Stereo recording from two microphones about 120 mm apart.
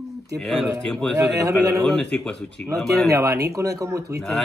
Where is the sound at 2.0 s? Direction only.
10° left (ahead or behind).